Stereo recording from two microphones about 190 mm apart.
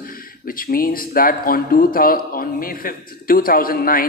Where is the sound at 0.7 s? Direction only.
50° left (ahead or behind).